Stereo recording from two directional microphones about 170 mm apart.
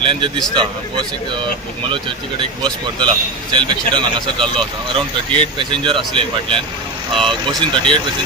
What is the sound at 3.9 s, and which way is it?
Speech, 30° right (ahead or behind).